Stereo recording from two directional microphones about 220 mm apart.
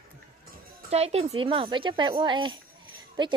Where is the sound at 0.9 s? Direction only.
30° right (ahead or behind).